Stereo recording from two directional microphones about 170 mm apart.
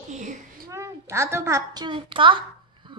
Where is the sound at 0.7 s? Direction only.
15° right (ahead or behind).